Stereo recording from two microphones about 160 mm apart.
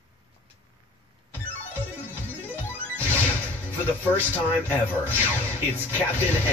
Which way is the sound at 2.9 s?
10° left (ahead or behind).